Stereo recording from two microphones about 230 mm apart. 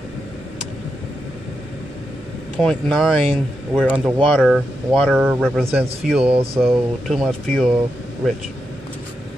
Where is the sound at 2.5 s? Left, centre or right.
Centre.